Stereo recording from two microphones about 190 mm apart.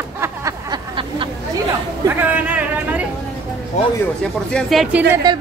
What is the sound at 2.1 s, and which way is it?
Speech, 10° right (ahead or behind).